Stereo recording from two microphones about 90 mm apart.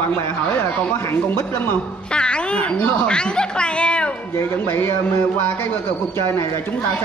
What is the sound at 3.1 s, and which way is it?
Speech, 10° left (ahead or behind).